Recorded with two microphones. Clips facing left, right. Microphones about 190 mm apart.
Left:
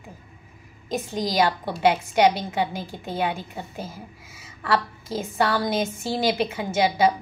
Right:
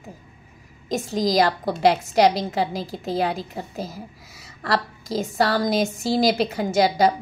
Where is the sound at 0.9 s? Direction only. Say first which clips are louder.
Right 4 dB; 40° right (ahead or behind).